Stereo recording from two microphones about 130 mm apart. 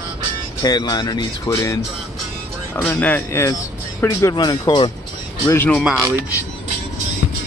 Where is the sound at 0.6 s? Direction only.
30° left (ahead or behind).